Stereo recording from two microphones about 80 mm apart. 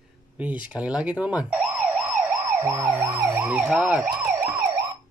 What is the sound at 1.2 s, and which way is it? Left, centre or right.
Car alarm, centre.